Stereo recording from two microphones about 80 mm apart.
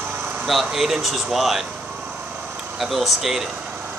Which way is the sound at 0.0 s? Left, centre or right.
Right.